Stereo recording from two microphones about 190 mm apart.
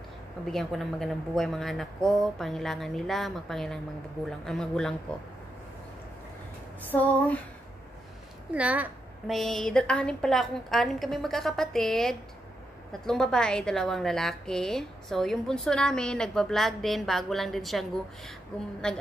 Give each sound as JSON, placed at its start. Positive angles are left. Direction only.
{"t": 0.5, "sound": "a woman's voice", "side_deg": 0}
{"t": 6.9, "sound": "a sound", "side_deg": 10}
{"t": 8.5, "sound": "a woman's voice", "side_deg": -5}